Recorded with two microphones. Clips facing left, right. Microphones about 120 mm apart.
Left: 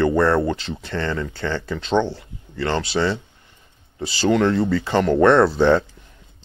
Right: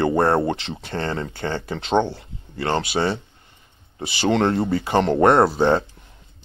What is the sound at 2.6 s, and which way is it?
Speech, 20° right (ahead or behind).